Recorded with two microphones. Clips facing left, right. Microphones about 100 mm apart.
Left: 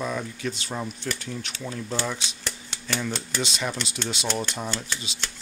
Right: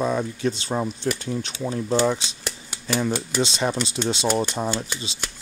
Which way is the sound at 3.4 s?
25° right (ahead or behind).